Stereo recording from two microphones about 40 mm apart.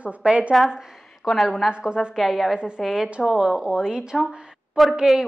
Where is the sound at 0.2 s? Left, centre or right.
Right.